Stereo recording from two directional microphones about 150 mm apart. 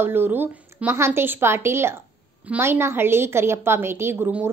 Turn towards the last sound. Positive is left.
turn(degrees=-15)  # may be behind; listen again after turning